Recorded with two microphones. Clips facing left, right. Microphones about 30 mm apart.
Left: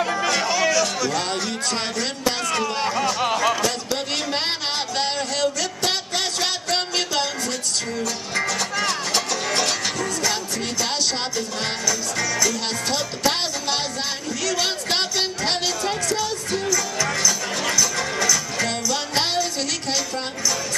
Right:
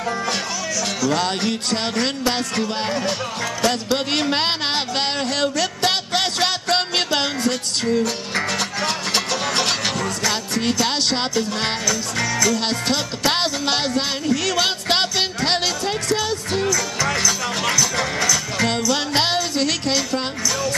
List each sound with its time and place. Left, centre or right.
0.5 s music: left
1.1 s music: right
3.6 s speech: right
4.9 s music: right
8.4 s speech: right
8.8 s music: right
12.5 s speech: right
14.3 s music: right
14.6 s music: right
18.6 s music: right